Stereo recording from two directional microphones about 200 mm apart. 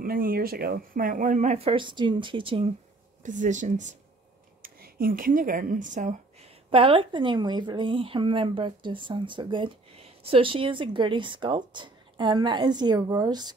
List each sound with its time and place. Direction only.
0.0 s speech: 45° right (ahead or behind); by 2.7 s 25° right (ahead or behind)
3.2 s speech: 40° right (ahead or behind); by 13.6 s 20° right (ahead or behind)